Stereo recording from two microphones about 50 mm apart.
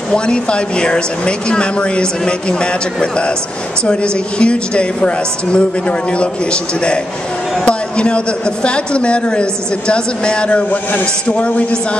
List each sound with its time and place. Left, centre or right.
0.1 s a woman's voice: centre
7.6 s a sound: left
8.6 s a woman's voice: left